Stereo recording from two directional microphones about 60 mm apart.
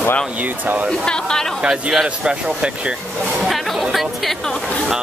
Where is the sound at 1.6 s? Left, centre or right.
Centre.